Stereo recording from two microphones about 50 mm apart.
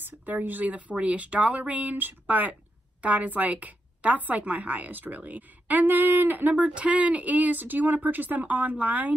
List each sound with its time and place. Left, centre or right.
0.2 s a woman's voice: right